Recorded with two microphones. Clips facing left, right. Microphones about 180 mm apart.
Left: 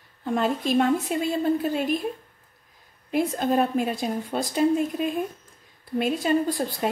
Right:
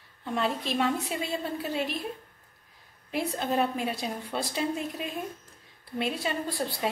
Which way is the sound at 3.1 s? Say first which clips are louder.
Left 6 dB; 45° left (ahead or behind).